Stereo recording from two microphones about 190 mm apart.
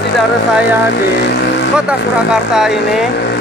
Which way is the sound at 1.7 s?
5° right (ahead or behind).